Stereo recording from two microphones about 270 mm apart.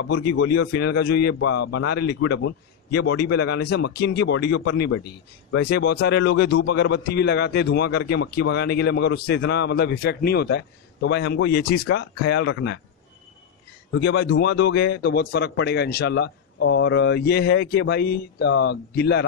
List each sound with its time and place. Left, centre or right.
0.4 s a man's voice: left
1.5 s speech: left
2.0 s a man's voice: left
3.0 s speech: left
3.3 s a man's voice: left
13.9 s a man's voice: left